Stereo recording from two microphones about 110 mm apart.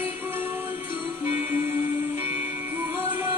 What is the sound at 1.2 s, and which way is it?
Music, 20° right (ahead or behind).